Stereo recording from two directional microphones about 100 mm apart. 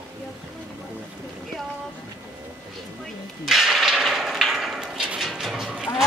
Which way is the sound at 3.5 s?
Centre (ahead or behind).